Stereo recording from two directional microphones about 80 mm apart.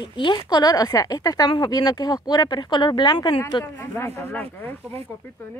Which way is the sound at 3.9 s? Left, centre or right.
Left.